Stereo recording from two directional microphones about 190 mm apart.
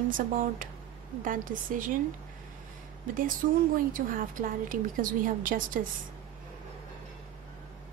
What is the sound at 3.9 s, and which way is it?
A woman's voice, 45° right (ahead or behind).